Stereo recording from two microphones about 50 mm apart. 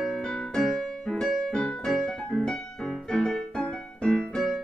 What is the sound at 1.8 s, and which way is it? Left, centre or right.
Piano, centre.